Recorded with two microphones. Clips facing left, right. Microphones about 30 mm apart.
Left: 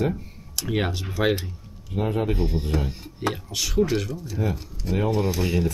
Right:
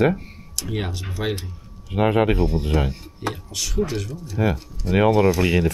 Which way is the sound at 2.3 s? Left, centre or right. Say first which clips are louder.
Right 4 dB; centre.